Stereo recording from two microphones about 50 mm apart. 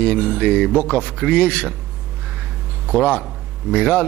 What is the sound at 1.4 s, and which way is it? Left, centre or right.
Speech, left.